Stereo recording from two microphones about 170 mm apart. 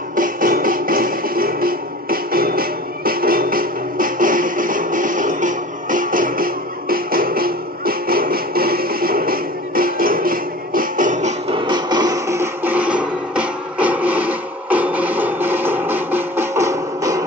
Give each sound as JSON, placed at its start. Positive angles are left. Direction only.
{"t": 0.1, "sound": "music", "side_deg": -55}
{"t": 11.5, "sound": "music", "side_deg": -25}